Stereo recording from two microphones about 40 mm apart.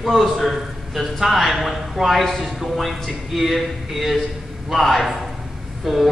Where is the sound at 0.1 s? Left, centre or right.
Centre.